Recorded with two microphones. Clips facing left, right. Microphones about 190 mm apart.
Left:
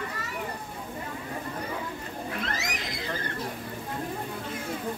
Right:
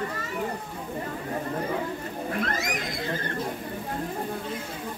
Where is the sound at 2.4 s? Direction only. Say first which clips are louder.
Right 4 dB; 50° right (ahead or behind).